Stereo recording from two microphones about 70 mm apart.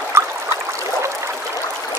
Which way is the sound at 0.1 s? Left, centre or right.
Right.